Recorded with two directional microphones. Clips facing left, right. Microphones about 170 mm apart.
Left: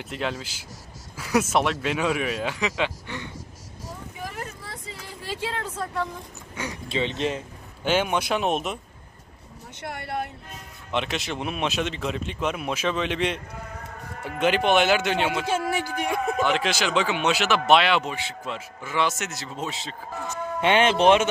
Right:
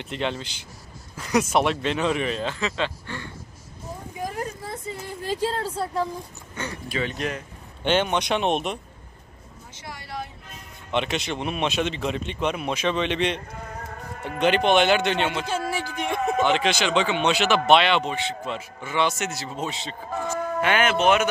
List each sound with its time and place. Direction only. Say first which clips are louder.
0.0 s speech: right 2 dB; 5° left (ahead or behind)
4.4 s a sound: right 5 dB; 45° right (ahead or behind)
6.6 s speech: even; 10° left (ahead or behind)
6.9 s speech: left 3 dB; 25° left (ahead or behind)
7.8 s speech: right 1 dB; 5° left (ahead or behind)
9.8 s a sound: left 4 dB; 60° left (ahead or behind)
10.9 s speech: right 2 dB; centre (ahead or behind)
20.6 s speech: left 3 dB; 30° left (ahead or behind)